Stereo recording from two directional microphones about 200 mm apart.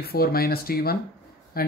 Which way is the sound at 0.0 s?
50° left (ahead or behind).